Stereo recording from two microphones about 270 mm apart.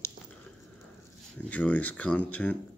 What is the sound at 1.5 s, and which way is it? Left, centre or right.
Speech, centre.